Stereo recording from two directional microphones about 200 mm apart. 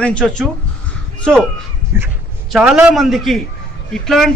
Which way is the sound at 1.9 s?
10° right (ahead or behind).